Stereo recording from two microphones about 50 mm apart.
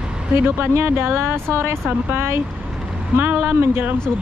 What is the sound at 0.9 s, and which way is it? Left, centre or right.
Speech, right.